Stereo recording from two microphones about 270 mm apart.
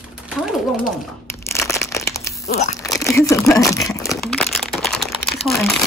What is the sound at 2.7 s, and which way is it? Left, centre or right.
Speech, centre.